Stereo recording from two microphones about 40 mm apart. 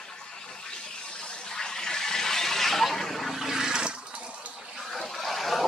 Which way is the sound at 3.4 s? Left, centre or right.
Centre.